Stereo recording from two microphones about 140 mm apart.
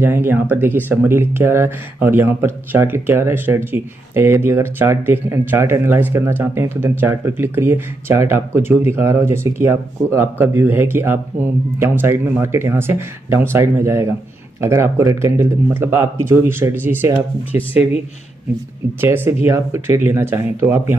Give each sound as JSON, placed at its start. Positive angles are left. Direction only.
{"t": 0.0, "sound": "speech", "side_deg": -15}
{"t": 18.9, "sound": "speech", "side_deg": -15}